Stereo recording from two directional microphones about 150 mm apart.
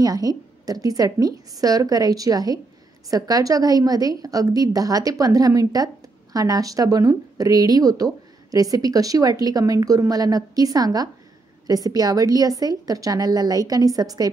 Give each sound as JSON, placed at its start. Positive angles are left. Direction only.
{"t": 0.0, "sound": "speech", "side_deg": -25}